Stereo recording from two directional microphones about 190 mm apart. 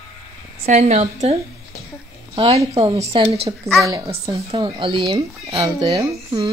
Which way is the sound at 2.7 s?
30° right (ahead or behind).